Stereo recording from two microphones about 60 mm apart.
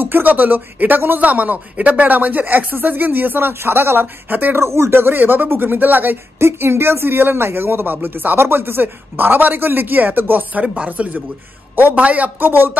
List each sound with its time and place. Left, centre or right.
0.0 s speech: right
4.6 s a man's voice: right
6.4 s a man's voice: right
10.6 s a man's voice: centre; by 12.7 s right